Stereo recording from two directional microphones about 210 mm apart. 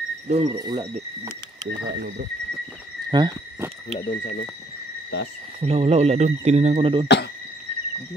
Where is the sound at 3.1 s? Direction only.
20° right (ahead or behind).